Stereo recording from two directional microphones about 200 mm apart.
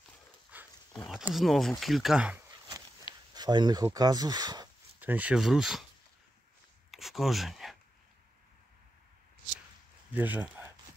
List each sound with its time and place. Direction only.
0.5 s dog: 10° right (ahead or behind)
1.0 s speech: centre (ahead or behind)
3.3 s speech: 20° right (ahead or behind)
5.0 s speech: 10° right (ahead or behind)
6.9 s a sound: centre (ahead or behind)
10.1 s speech: 10° right (ahead or behind)